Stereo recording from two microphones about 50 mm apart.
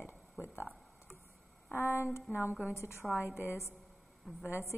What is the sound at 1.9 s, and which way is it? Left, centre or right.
Speech, left.